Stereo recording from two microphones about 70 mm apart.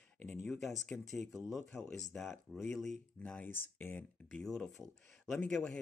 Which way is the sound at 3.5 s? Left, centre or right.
Left.